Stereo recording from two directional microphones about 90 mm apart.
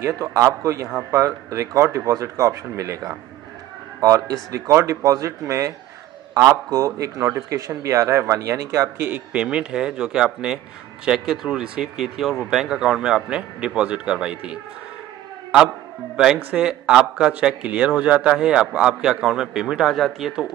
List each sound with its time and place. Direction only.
0.0 s a man's voice: 35° right (ahead or behind)
6.7 s a man's voice: 35° right (ahead or behind)
9.0 s speech: 20° right (ahead or behind)
16.4 s speech: 10° right (ahead or behind)